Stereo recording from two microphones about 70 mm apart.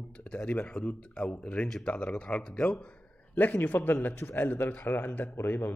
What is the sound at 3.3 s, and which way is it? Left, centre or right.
Speech, left.